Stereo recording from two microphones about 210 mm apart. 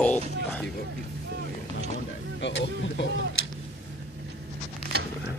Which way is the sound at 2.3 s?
60° left (ahead or behind).